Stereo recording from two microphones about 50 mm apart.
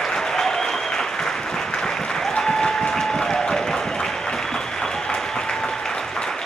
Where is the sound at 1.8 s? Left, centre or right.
Centre.